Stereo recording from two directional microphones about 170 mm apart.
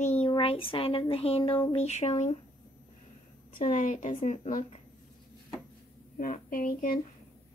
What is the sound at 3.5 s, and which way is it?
A woman's voice, 50° left (ahead or behind).